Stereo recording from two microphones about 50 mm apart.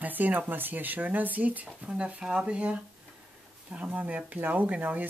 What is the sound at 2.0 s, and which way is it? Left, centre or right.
Speech, centre.